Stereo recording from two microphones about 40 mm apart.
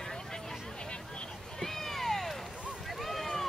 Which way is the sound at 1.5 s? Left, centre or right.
Centre.